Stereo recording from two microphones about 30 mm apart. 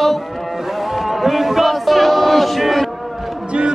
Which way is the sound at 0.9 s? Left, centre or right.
Centre.